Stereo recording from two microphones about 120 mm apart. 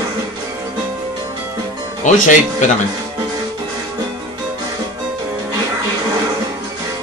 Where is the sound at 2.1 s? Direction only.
90° left.